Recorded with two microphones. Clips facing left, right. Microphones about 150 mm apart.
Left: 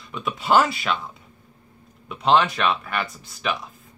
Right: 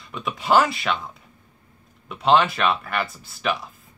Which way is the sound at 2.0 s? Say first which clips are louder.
Right 1 dB; centre (ahead or behind).